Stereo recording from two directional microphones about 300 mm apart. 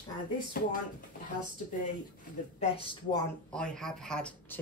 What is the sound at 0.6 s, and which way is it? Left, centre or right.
Speech, left.